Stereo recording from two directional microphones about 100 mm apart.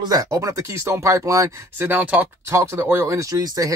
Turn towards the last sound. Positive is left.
turn(degrees=-35)  # may be behind; listen again after turning